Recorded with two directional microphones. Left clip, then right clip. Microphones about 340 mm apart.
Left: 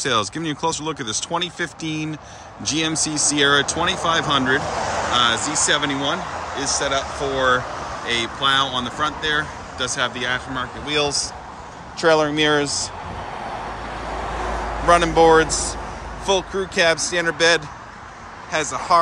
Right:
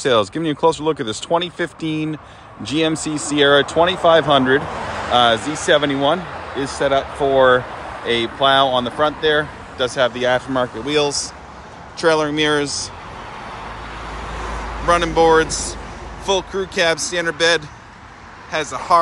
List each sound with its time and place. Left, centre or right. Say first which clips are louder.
0.0 s speech: right 5 dB; centre
13.4 s vehicle: left 2 dB; left
14.9 s speech: even; centre